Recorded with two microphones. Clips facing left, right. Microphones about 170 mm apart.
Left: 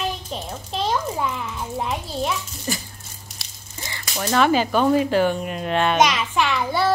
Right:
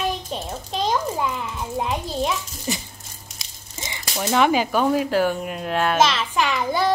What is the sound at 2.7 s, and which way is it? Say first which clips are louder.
Speech: even; 20° right (ahead or behind).